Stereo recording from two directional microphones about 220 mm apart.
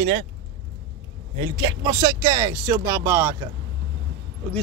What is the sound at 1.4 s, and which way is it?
Speech, 20° right (ahead or behind).